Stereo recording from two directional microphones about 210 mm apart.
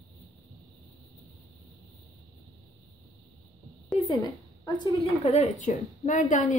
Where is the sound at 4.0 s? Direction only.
30° left (ahead or behind).